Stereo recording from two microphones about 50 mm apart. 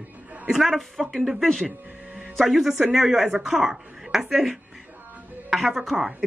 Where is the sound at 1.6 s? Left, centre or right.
Centre.